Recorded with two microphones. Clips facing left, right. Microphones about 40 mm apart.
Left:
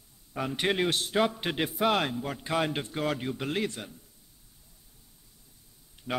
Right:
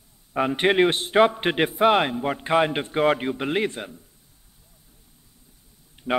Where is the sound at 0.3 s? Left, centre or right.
Right.